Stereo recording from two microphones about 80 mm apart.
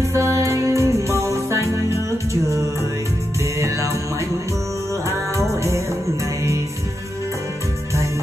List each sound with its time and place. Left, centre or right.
0.1 s music: right
3.5 s music: right
5.5 s music: right